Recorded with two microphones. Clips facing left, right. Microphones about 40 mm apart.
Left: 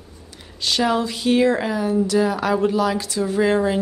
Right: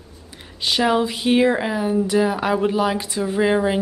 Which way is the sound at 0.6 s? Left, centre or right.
Centre.